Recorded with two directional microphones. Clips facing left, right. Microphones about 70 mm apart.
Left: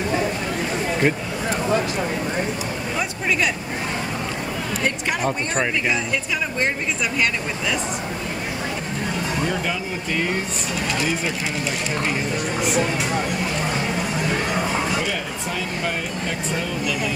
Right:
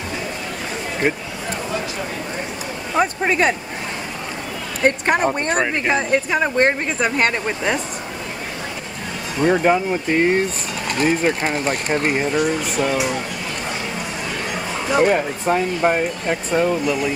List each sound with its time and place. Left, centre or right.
1.0 s speech: centre
3.0 s speech: right
4.8 s speech: right
9.4 s speech: right
14.9 s speech: right